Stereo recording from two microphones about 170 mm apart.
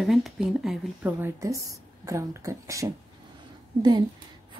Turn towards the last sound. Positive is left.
turn(degrees=-25)  # may be behind; listen again after turning